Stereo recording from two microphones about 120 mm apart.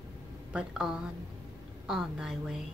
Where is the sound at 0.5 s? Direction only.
5° right (ahead or behind).